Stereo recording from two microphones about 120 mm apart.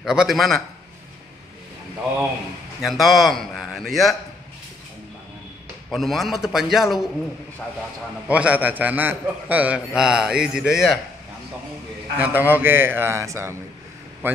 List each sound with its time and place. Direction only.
0.0 s a man's voice: 5° right (ahead or behind)
2.8 s a man's voice: centre (ahead or behind)
5.9 s a man's voice: centre (ahead or behind)
8.3 s a man's voice: 10° right (ahead or behind)
12.2 s a man's voice: 15° right (ahead or behind)